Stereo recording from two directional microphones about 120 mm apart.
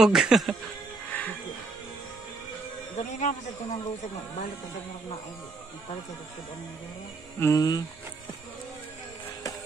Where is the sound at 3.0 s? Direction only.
90° left.